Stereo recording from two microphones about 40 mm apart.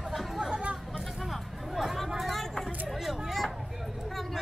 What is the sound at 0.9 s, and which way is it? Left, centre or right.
Music, centre.